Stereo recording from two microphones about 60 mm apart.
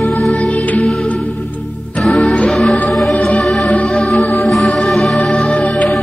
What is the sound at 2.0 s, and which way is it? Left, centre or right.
Music, centre.